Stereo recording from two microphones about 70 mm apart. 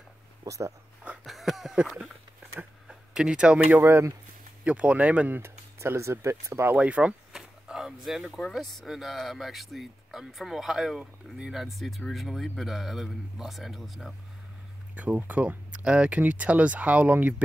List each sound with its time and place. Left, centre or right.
0.4 s speech: right
1.2 s a sound: centre
2.9 s a sound: centre
3.8 s speech: right
4.6 s speech: centre
5.4 s speech: right
6.7 s speech: centre
7.3 s a sound: centre
8.4 s speech: centre
15.0 s speech: right